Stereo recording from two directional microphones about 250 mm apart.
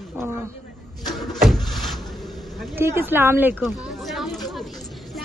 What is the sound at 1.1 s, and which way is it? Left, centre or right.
Vehicle, centre.